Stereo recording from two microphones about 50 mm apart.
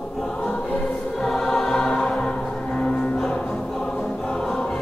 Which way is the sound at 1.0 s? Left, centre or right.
Centre.